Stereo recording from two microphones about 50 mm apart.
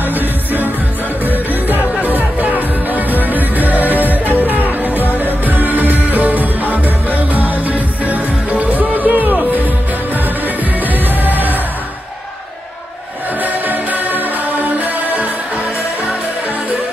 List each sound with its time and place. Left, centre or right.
1.2 s music: right
13.4 s music: right